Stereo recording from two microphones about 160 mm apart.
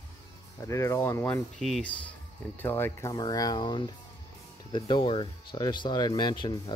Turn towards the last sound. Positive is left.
turn(degrees=30)  # may be behind; listen again after turning